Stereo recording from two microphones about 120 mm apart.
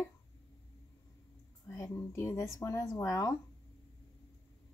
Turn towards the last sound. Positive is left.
turn(degrees=30)  # may be behind; listen again after turning